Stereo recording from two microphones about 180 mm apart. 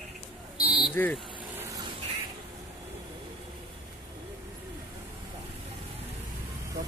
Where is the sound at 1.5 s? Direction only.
15° right (ahead or behind).